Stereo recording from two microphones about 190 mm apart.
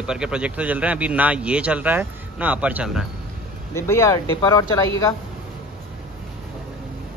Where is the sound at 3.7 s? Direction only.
15° left (ahead or behind).